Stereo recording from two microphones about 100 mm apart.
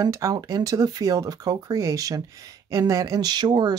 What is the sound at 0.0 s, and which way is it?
Speech, 35° right (ahead or behind).